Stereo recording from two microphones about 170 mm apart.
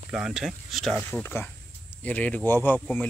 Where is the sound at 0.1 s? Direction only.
5° right (ahead or behind).